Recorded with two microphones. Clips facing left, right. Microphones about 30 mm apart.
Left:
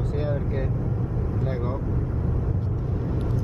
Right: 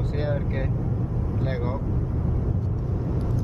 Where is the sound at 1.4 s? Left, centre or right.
Right.